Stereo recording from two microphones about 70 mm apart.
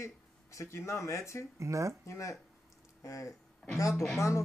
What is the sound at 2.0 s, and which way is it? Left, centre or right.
Speech, left.